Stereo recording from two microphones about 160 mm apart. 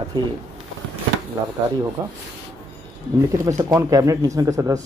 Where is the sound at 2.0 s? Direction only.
20° right (ahead or behind).